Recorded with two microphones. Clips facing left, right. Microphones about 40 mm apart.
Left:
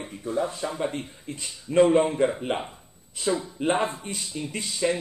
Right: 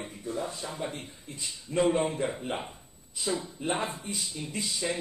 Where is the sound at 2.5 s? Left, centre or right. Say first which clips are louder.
Left 6 dB; left.